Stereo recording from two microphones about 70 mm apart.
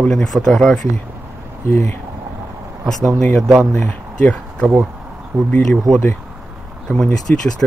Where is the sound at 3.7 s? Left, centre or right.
Centre.